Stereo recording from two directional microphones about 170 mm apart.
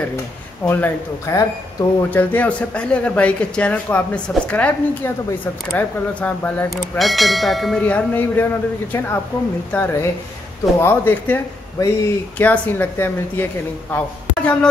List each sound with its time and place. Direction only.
0.7 s speech: 10° left (ahead or behind)
2.0 s speech: 10° left (ahead or behind)
7.0 s speech: centre (ahead or behind)
9.7 s speech: 10° left (ahead or behind)